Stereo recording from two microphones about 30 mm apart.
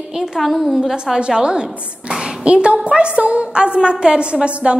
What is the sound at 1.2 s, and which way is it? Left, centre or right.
A woman's voice, right.